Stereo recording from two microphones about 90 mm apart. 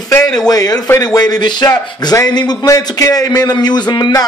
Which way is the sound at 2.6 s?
40° left (ahead or behind).